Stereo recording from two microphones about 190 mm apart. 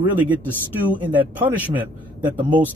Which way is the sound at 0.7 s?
10° right (ahead or behind).